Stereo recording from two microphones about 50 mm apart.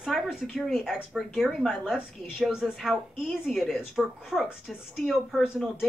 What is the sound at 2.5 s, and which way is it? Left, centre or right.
Speech, centre.